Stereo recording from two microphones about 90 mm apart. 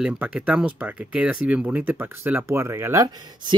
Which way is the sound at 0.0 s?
15° right (ahead or behind).